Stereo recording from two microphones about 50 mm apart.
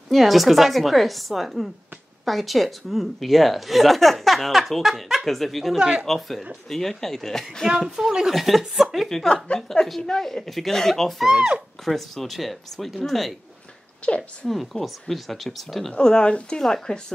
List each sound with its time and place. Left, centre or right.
0.1 s a woman's voice: centre
5.8 s speech: centre
6.0 s a woman's voice: centre
14.0 s a woman's voice: left
14.5 s a woman's voice: centre
15.9 s speech: centre